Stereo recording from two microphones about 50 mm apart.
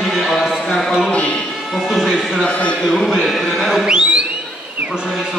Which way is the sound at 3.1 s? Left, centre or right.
Centre.